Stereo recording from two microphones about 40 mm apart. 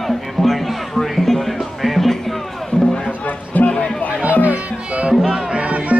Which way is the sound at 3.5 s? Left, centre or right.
Left.